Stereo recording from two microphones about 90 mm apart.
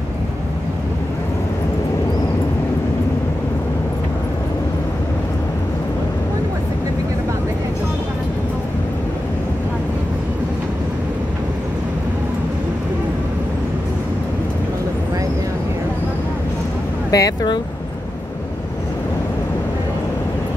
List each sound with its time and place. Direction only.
17.1 s speech: 40° left (ahead or behind)